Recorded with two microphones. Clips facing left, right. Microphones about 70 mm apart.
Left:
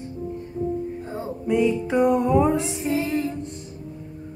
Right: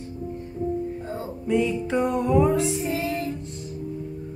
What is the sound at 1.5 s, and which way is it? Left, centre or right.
Music, centre.